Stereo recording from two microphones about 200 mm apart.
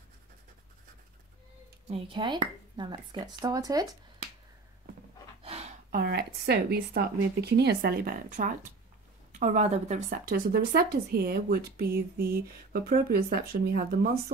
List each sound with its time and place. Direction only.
1.9 s speech: 25° right (ahead or behind)
5.4 s a sound: 30° right (ahead or behind)
5.9 s a woman's voice: 55° right (ahead or behind)